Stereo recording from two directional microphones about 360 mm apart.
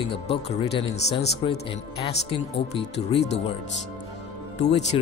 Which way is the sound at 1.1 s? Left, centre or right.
Left.